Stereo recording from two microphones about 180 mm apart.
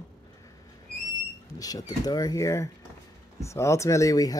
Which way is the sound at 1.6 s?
20° left (ahead or behind).